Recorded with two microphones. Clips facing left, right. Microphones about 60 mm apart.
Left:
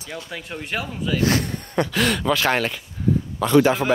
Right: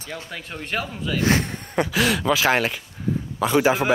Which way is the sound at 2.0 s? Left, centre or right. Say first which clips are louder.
Right 1 dB; centre.